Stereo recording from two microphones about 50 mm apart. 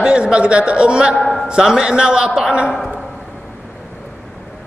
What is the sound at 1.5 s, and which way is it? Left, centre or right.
Speech, centre.